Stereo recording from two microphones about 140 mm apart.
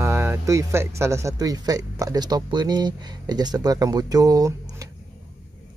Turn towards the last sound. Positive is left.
turn(degrees=-25)  # may be behind; listen again after turning